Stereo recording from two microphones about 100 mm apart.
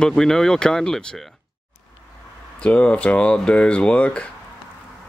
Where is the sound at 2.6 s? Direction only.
10° left (ahead or behind).